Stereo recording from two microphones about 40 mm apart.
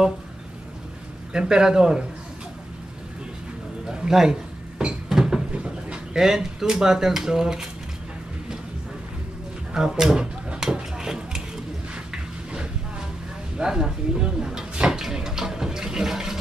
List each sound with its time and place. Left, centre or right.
1.3 s speech: centre
3.9 s cupboard open or close: centre
5.6 s speech: centre
9.8 s speech: centre
10.6 s a sound: centre
13.6 s a sound: centre